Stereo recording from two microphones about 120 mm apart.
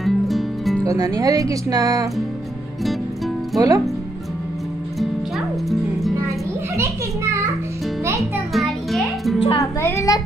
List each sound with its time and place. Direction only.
0.0 s music: centre (ahead or behind)
0.8 s speech: 30° right (ahead or behind)
3.5 s speech: 30° right (ahead or behind)
5.7 s music: centre (ahead or behind)
6.8 s children playing: 25° right (ahead or behind)
8.2 s music: centre (ahead or behind)
9.6 s speech: 25° left (ahead or behind)